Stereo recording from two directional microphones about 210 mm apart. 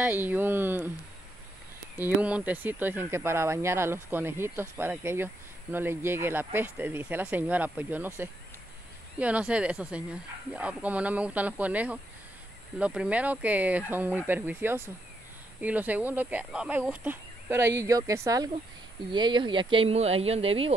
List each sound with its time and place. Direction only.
0.0 s speech: 10° right (ahead or behind)
2.0 s speech: 10° right (ahead or behind); by 20.7 s 25° right (ahead or behind)